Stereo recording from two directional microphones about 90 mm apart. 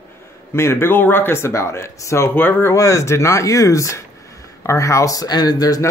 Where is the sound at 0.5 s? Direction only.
30° left (ahead or behind).